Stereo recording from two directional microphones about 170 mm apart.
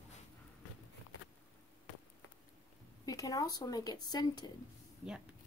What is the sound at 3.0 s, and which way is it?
Speech, 20° left (ahead or behind).